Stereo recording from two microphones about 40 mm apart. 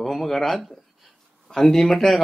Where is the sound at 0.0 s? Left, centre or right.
Centre.